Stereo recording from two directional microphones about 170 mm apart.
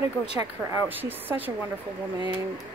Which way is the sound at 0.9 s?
10° right (ahead or behind).